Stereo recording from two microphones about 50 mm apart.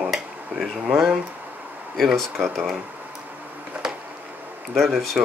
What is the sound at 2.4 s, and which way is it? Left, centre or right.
Speech, centre.